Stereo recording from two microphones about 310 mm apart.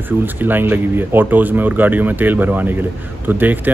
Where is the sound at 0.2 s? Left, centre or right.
Centre.